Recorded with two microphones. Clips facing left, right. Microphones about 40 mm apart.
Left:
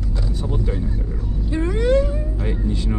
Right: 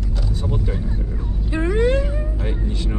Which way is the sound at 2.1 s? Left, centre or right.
Centre.